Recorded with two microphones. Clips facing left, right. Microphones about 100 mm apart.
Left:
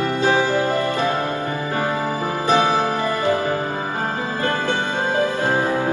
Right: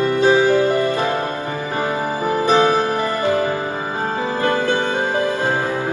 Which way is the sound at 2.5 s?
15° left (ahead or behind).